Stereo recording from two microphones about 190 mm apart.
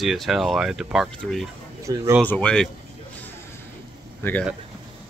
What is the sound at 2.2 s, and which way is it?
Speech, 5° left (ahead or behind).